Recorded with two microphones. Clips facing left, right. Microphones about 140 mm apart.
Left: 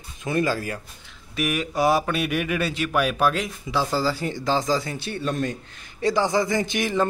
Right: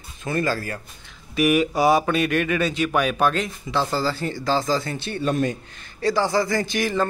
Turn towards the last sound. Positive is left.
turn(degrees=20)  # may be behind; listen again after turning